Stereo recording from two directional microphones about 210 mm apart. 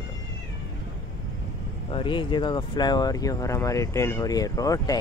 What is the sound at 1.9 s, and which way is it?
Speech, 20° left (ahead or behind).